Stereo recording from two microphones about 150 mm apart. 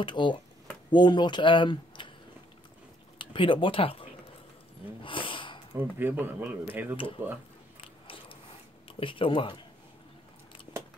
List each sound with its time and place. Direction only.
0.0 s speech: 30° left (ahead or behind)
3.2 s speech: 35° left (ahead or behind)
5.0 s a sound: 35° left (ahead or behind)
5.8 s speech: 15° right (ahead or behind)
8.8 s speech: 35° left (ahead or behind)